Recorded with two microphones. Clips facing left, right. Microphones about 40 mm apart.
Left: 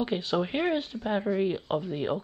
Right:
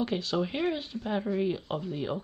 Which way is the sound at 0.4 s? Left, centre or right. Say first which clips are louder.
Left 1 dB; centre.